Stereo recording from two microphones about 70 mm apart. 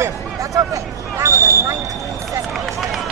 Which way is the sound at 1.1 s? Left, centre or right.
Right.